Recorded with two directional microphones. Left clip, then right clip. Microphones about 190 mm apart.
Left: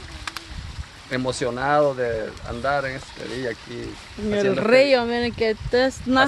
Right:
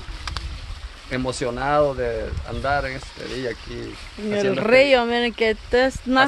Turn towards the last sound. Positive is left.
turn(degrees=0)  # may be behind; listen again after turning